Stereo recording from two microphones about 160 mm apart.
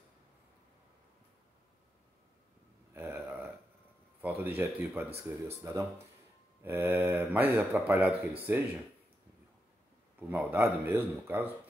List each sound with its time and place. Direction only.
2.9 s burping: 10° right (ahead or behind)
4.2 s a man's voice: 10° right (ahead or behind)
10.1 s a man's voice: 10° right (ahead or behind)